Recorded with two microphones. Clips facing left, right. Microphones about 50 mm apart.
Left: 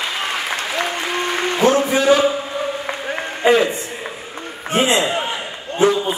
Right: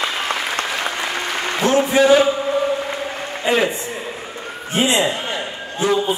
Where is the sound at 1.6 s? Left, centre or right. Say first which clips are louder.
Left 3 dB; right.